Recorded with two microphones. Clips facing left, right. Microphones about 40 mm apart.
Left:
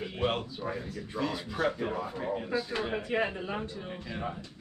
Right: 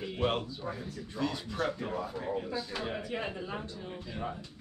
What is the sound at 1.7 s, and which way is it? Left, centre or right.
Speech, left.